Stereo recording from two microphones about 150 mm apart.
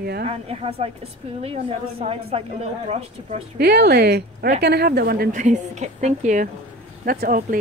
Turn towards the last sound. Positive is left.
turn(degrees=-70)  # may be behind; listen again after turning